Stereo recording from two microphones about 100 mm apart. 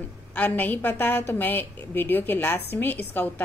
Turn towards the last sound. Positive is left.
turn(degrees=20)  # may be behind; listen again after turning